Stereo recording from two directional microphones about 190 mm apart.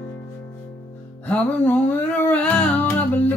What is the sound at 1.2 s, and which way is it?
Music, 10° left (ahead or behind).